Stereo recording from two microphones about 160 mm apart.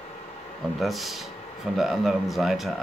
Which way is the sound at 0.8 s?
Centre (ahead or behind).